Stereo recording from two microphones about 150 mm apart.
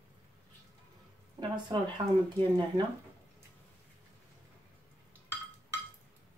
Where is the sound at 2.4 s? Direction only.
35° right (ahead or behind).